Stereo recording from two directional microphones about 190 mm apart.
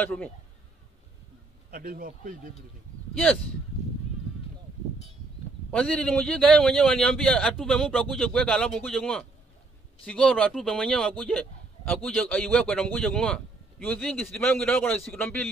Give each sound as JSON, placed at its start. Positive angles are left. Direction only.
{"t": 0.0, "sound": "speech", "side_deg": 5}
{"t": 1.7, "sound": "speech", "side_deg": -50}
{"t": 5.7, "sound": "speech", "side_deg": 5}